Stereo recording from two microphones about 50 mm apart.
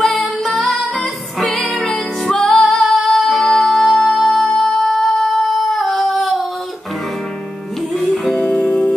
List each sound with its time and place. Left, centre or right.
0.0 s music: centre
1.4 s music: centre
8.4 s music: left